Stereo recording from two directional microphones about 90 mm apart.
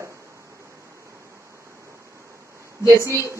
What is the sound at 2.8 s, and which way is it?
Speech, 35° right (ahead or behind).